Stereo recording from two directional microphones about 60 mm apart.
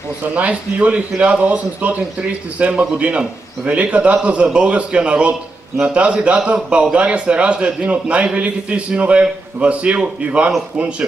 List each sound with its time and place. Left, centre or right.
0.3 s a man's voice: right